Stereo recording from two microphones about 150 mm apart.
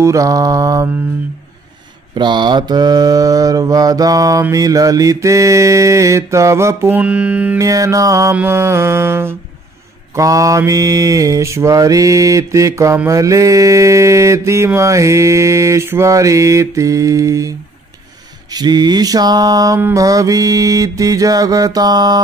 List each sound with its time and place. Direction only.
0.0 s mantra: 20° right (ahead or behind)
2.1 s mantra: 30° right (ahead or behind); by 7.5 s 10° right (ahead or behind)
7.5 s mantra: 20° right (ahead or behind)
8.4 s music: 15° right (ahead or behind)
10.1 s mantra: 20° right (ahead or behind)